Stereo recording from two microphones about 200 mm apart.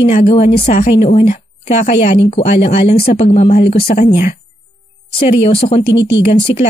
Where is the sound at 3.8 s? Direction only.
50° left (ahead or behind).